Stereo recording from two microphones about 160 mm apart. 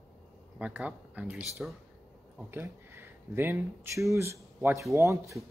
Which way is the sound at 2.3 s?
15° right (ahead or behind).